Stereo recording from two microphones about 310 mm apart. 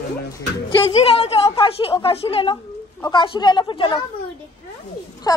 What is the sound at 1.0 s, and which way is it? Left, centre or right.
A woman's voice, centre.